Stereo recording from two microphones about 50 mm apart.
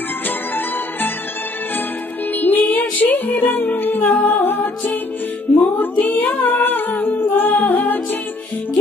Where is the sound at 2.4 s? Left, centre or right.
Left.